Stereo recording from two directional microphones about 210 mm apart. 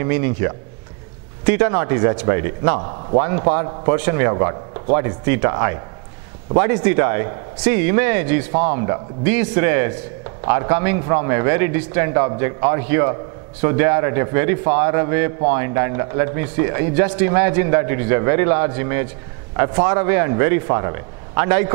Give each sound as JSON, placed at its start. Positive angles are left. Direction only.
{"t": 0.0, "sound": "a man's voice", "side_deg": -15}